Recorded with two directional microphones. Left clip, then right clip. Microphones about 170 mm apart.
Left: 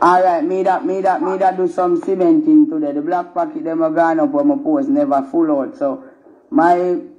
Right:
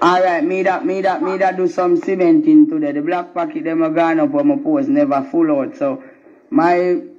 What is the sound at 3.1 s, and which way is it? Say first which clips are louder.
A man's voice: left 1 dB; 45° right (ahead or behind).